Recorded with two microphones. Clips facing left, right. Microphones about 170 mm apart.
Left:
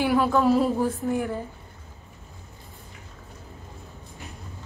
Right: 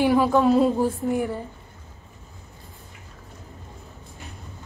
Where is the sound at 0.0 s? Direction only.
15° right (ahead or behind).